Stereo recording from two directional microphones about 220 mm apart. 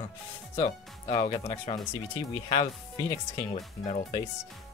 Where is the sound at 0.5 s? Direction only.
25° left (ahead or behind).